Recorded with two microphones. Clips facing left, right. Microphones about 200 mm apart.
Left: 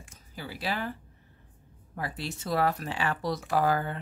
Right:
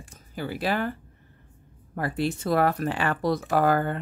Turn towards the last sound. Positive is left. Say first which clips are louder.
# right 4 dB
turn(degrees=-55)  # may be behind; listen again after turning